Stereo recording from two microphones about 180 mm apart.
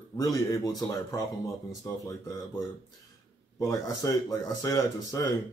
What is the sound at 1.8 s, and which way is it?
Speech, 20° left (ahead or behind).